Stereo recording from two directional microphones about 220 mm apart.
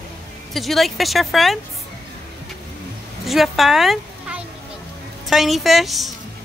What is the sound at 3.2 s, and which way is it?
A woman's voice, centre (ahead or behind).